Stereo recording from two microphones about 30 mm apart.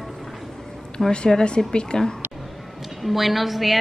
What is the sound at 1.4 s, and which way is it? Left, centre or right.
Speech, left.